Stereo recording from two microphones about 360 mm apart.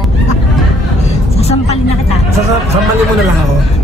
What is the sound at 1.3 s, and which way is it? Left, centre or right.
Vehicle, centre.